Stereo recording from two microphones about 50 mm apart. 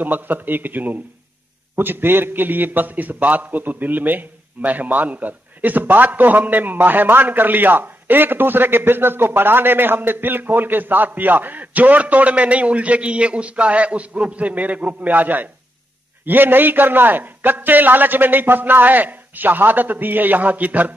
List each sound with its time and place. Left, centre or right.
0.0 s a man's voice: right